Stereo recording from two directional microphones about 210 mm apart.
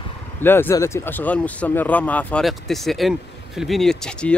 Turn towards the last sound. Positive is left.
turn(degrees=5)  # may be behind; listen again after turning